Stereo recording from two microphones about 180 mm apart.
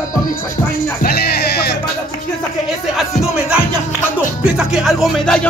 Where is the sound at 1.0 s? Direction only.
60° left (ahead or behind).